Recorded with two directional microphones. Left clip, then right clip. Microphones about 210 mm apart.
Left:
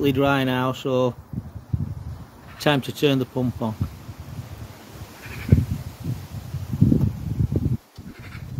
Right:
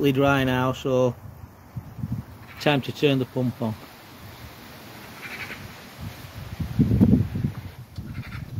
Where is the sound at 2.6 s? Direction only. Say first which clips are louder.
Left 1 dB; 10° left (ahead or behind).